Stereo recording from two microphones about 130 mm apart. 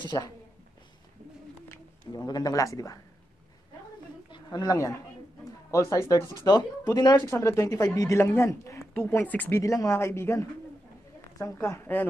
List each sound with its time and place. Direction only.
0.0 s speech: 35° left (ahead or behind)
2.1 s speech: 30° left (ahead or behind)
4.3 s speech: 30° left (ahead or behind)
7.2 s speech: 20° left (ahead or behind)
9.6 s speech: 25° left (ahead or behind)